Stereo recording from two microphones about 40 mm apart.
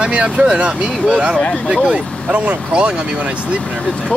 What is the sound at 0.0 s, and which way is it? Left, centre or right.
Speech, right.